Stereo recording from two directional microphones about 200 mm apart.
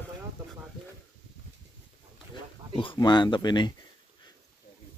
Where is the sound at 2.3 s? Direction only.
25° left (ahead or behind).